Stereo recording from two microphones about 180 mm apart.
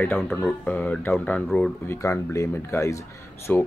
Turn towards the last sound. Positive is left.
turn(degrees=10)  # may be behind; listen again after turning